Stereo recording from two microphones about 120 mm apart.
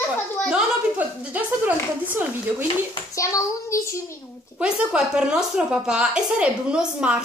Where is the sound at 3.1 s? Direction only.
25° left (ahead or behind).